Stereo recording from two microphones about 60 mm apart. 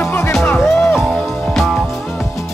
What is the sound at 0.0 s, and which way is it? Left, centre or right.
Music, left.